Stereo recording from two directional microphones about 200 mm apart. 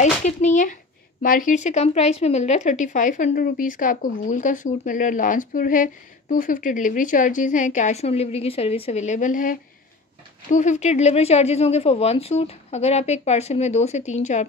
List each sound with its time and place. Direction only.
0.0 s speech: 35° left (ahead or behind)